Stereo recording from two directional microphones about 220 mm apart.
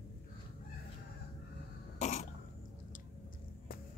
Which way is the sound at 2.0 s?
35° left (ahead or behind).